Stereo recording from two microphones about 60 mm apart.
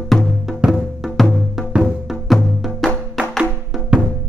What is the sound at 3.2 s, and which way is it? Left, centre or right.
Music, centre.